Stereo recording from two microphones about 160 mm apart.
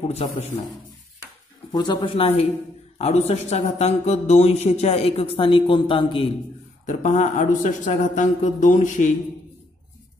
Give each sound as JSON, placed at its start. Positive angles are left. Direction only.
{"t": 0.0, "sound": "speech", "side_deg": 40}
{"t": 1.7, "sound": "speech", "side_deg": 30}
{"t": 6.9, "sound": "speech", "side_deg": 50}